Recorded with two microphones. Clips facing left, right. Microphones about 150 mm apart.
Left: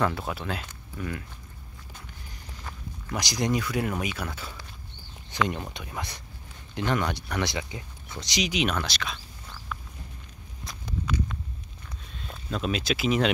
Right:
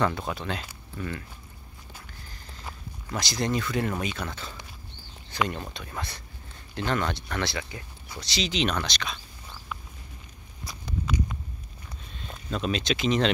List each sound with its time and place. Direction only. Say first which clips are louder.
0.0 s speech: even; 5° left (ahead or behind)
3.1 s speech: left 1 dB; 15° left (ahead or behind)
10.7 s a sound: even; 5° right (ahead or behind)
12.2 s speech: even; centre (ahead or behind)